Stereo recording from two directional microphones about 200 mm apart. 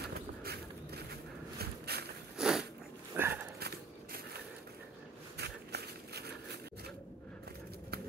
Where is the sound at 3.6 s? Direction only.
50° right (ahead or behind).